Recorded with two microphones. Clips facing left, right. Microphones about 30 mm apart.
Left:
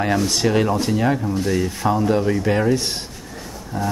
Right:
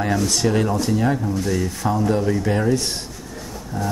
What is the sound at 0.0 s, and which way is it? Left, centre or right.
Speech, centre.